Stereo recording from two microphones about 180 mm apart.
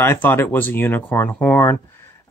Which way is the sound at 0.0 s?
15° left (ahead or behind).